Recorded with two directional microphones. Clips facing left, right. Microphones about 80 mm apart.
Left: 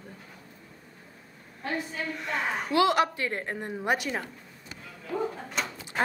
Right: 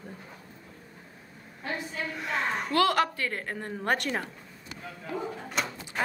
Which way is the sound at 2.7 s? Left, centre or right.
Centre.